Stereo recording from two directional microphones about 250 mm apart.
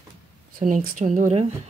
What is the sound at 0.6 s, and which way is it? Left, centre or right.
Speech, right.